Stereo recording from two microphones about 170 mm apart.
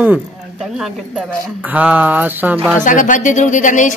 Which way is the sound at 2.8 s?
50° left (ahead or behind).